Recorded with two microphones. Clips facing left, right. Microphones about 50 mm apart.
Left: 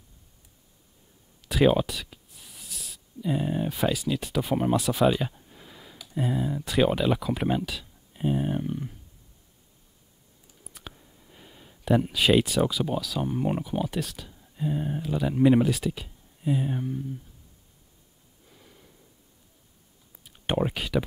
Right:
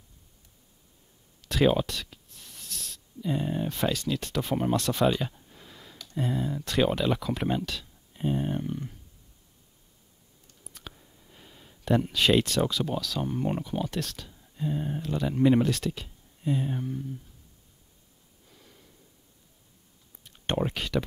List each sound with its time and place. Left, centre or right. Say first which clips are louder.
1.5 s speech: left 2 dB; centre
10.4 s speech: left 1 dB; centre
18.5 s gasp: left 2 dB; centre
20.2 s speech: left 2 dB; centre